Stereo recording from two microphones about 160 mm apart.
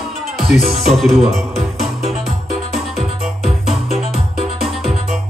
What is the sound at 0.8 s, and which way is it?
Music, centre (ahead or behind).